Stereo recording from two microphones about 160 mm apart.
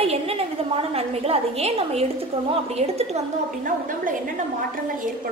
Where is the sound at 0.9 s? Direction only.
40° right (ahead or behind).